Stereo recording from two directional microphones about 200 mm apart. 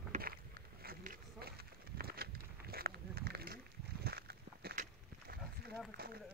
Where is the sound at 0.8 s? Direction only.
45° right (ahead or behind).